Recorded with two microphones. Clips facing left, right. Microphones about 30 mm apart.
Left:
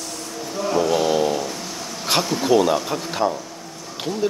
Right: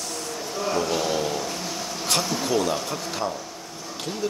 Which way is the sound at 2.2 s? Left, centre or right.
Centre.